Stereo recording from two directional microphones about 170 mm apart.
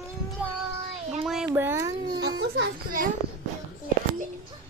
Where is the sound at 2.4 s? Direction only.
75° right (ahead or behind).